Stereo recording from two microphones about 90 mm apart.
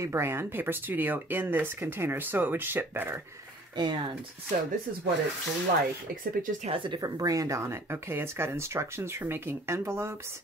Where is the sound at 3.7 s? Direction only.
60° right (ahead or behind).